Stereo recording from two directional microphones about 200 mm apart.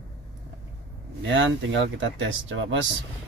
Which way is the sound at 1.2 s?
70° right (ahead or behind).